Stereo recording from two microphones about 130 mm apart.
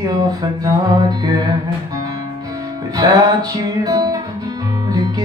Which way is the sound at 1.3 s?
30° right (ahead or behind).